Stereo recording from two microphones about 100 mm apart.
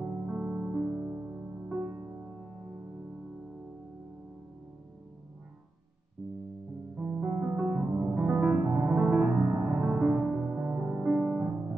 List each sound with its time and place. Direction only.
0.0 s music: 15° right (ahead or behind)
1.8 s music: 30° right (ahead or behind)
7.0 s music: 20° right (ahead or behind)